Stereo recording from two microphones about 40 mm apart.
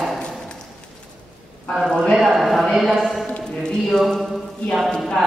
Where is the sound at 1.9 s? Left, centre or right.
Centre.